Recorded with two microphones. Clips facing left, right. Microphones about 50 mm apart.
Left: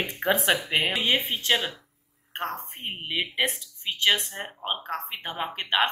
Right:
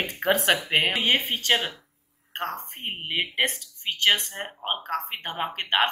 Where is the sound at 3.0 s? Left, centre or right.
Centre.